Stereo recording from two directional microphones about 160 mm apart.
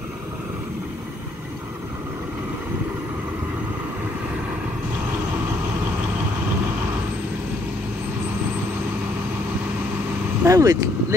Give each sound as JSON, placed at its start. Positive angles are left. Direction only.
{"t": 10.4, "sound": "vehicle", "side_deg": -20}